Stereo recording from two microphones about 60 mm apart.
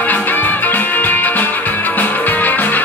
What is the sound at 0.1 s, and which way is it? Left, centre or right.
Music, left.